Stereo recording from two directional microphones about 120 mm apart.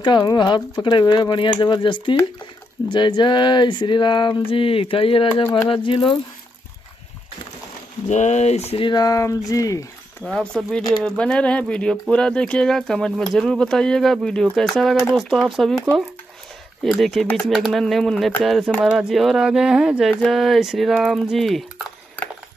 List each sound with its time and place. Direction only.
0.0 s a sound: 35° left (ahead or behind)
5.7 s speech: 45° left (ahead or behind)
8.1 s speech: 75° left (ahead or behind)
8.8 s speech: 35° left (ahead or behind)
10.2 s speech: 5° left (ahead or behind)
16.8 s speech: centre (ahead or behind)